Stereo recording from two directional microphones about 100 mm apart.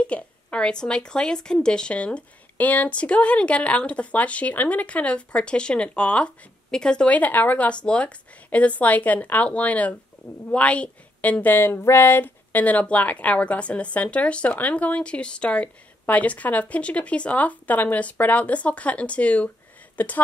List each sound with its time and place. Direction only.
0.0 s speech: 10° left (ahead or behind)